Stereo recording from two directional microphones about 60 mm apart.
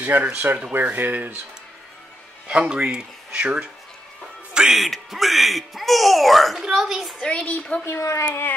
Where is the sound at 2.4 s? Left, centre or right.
Centre.